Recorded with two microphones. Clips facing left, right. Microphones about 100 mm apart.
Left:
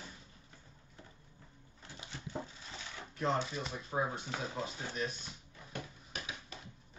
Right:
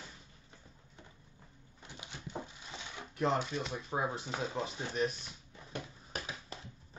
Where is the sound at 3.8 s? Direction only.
20° right (ahead or behind).